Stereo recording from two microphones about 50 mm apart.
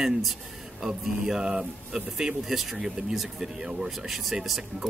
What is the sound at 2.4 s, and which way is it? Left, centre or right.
Speech, centre.